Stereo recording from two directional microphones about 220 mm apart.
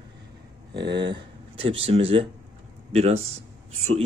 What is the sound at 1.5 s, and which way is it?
Speech, 25° right (ahead or behind).